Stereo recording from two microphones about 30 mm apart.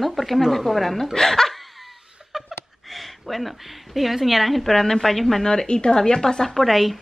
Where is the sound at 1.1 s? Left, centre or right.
Centre.